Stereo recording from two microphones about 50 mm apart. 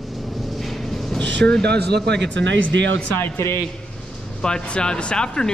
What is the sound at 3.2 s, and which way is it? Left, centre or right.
Speech, left.